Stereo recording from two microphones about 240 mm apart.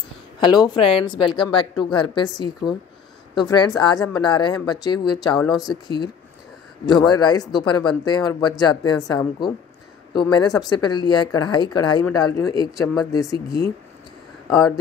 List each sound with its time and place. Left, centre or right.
0.4 s speech: centre
5.4 s speech: centre
5.7 s speech: centre